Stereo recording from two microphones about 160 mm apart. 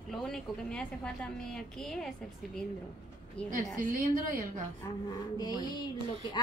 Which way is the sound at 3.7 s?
60° right (ahead or behind).